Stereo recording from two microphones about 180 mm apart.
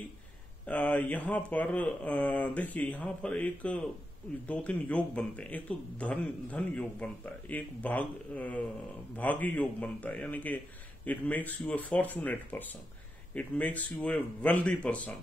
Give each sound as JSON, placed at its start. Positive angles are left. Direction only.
{"t": 0.7, "sound": "speech", "side_deg": 10}